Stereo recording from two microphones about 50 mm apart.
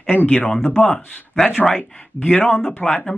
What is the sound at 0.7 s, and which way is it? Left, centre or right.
Speech, centre.